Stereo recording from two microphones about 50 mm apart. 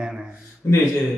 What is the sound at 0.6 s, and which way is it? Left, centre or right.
Speech, left.